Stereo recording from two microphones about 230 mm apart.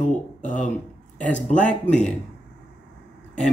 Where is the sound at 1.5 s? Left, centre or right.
Left.